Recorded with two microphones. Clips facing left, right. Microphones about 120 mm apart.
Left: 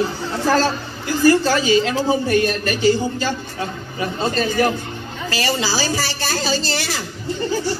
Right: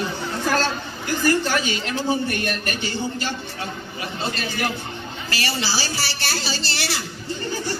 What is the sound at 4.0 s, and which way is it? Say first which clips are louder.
Speech: left 8 dB; 40° left (ahead or behind).